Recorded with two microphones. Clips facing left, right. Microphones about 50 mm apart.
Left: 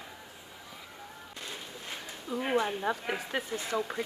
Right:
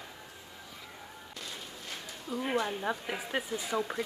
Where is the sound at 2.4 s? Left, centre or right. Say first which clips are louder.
Left 3 dB; centre.